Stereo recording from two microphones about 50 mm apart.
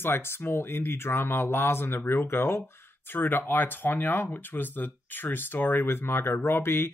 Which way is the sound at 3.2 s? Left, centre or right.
Left.